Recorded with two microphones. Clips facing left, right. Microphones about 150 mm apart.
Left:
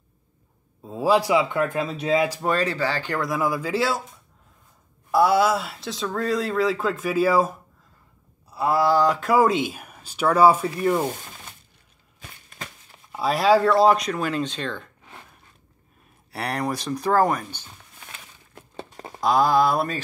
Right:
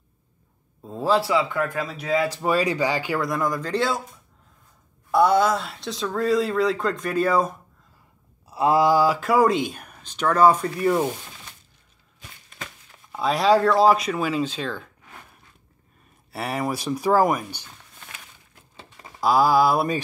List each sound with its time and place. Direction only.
0.8 s speech: 10° left (ahead or behind); by 2.2 s 25° left (ahead or behind)
2.4 s speech: 10° right (ahead or behind)
3.2 s speech: 5° left (ahead or behind)
5.1 s speech: 5° left (ahead or behind)
8.5 s speech: 20° right (ahead or behind); by 11.1 s centre (ahead or behind)
13.1 s speech: 5° left (ahead or behind)
16.3 s speech: centre (ahead or behind)
18.5 s a sound: 45° left (ahead or behind)
19.2 s speech: 5° right (ahead or behind)